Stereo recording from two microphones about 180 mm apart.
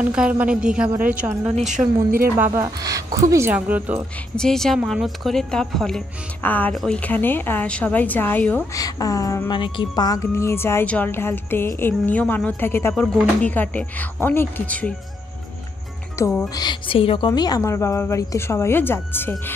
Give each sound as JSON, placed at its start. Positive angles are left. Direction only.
{"t": 0.0, "sound": "speech", "side_deg": -5}
{"t": 1.5, "sound": "a woman's voice", "side_deg": -40}
{"t": 2.0, "sound": "speech", "side_deg": -50}
{"t": 2.3, "sound": "speech", "side_deg": -15}
{"t": 4.4, "sound": "speech", "side_deg": 5}
{"t": 8.7, "sound": "speech", "side_deg": 20}
{"t": 16.2, "sound": "speech", "side_deg": 15}
{"t": 16.5, "sound": "speech", "side_deg": 25}
{"t": 17.3, "sound": "speech", "side_deg": 20}